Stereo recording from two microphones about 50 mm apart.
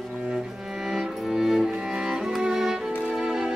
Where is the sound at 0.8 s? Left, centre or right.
Centre.